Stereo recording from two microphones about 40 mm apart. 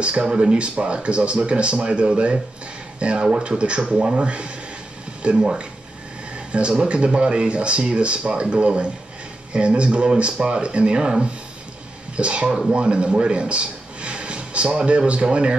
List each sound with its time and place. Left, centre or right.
0.0 s speech: right
12.4 s speech: centre
12.7 s a man's voice: right